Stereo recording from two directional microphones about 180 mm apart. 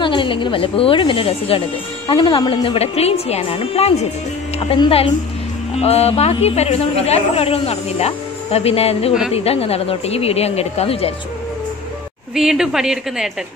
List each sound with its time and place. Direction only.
0.0 s a woman's voice: 25° left (ahead or behind)
12.4 s a woman's voice: centre (ahead or behind)